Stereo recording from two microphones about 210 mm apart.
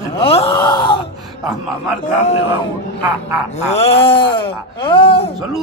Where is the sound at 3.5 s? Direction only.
30° left (ahead or behind).